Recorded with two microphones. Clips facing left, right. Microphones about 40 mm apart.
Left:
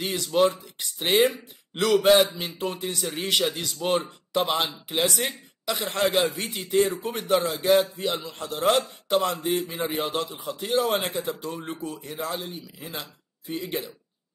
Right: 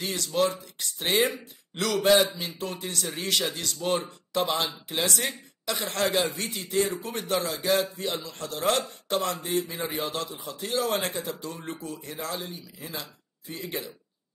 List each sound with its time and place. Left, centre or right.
0.0 s a man's voice: centre
8.1 s a man's voice: left
8.6 s a man's voice: centre
9.7 s a man's voice: left
13.5 s a man's voice: left